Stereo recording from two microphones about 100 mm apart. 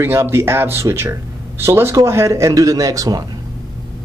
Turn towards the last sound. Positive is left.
turn(degrees=-35)  # may be behind; listen again after turning